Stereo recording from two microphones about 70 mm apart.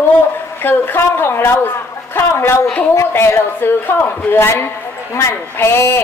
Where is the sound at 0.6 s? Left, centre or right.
Left.